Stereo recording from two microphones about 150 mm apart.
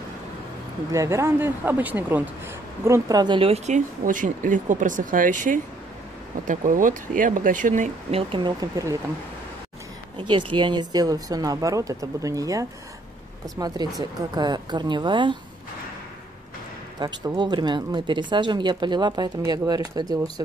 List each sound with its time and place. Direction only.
0.9 s speech: 20° right (ahead or behind); by 7.9 s 55° right (ahead or behind)
8.1 s speech: 35° right (ahead or behind)
10.1 s speech: 30° right (ahead or behind)
17.0 s speech: 30° right (ahead or behind)